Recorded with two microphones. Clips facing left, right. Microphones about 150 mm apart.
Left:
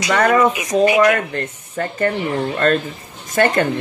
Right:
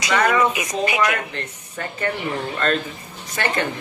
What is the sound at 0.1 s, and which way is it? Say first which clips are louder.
A woman's voice: left 4 dB; 45° left (ahead or behind).